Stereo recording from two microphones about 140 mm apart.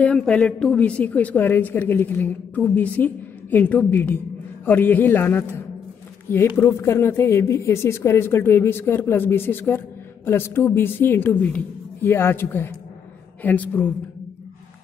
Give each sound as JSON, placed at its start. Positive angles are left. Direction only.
{"t": 0.0, "sound": "a woman's voice", "side_deg": 5}